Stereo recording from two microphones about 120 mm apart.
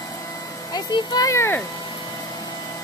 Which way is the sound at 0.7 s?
30° left (ahead or behind).